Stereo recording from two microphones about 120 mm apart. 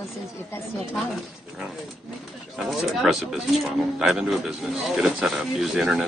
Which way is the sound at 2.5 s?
Centre (ahead or behind).